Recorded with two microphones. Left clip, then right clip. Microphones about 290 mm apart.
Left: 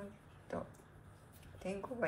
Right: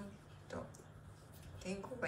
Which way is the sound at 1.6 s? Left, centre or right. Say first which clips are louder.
Left 3 dB; centre.